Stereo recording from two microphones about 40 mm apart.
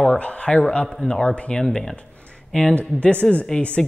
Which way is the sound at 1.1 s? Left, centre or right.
Centre.